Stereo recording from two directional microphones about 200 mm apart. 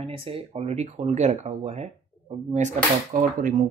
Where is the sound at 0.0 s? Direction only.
30° right (ahead or behind).